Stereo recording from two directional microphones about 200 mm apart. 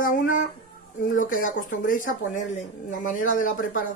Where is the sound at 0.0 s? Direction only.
40° left (ahead or behind).